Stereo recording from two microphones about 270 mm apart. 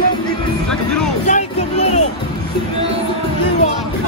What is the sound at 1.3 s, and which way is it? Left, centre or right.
Speech, left.